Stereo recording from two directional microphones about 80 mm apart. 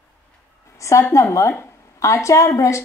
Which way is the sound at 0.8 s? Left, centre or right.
Left.